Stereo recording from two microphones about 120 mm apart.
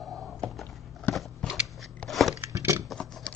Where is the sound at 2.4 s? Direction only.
20° right (ahead or behind).